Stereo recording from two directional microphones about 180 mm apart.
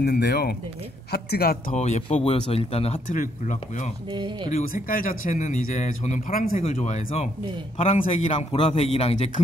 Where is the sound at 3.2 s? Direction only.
45° left (ahead or behind).